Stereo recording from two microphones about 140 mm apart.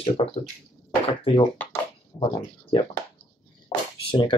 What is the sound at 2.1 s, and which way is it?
Speech, 25° left (ahead or behind).